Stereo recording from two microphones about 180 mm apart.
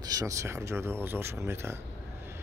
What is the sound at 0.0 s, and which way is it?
Speech, 20° right (ahead or behind).